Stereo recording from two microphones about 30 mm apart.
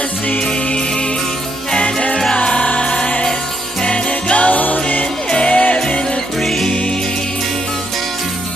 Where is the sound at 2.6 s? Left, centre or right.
Left.